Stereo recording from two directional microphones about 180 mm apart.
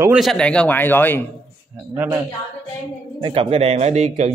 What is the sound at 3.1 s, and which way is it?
Speech, 30° right (ahead or behind).